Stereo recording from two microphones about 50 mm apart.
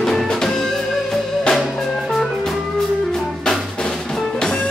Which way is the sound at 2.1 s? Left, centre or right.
Centre.